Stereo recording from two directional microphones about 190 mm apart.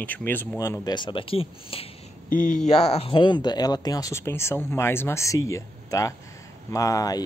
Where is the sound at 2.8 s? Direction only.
30° left (ahead or behind).